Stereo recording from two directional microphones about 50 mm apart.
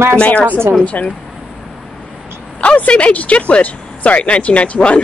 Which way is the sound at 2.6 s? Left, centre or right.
Left.